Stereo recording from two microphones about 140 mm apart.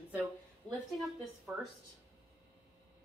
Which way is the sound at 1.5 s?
10° right (ahead or behind).